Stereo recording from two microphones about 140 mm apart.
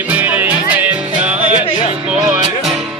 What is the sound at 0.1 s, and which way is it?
Music, 10° right (ahead or behind).